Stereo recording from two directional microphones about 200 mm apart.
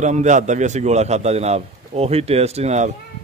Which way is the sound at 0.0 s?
35° right (ahead or behind).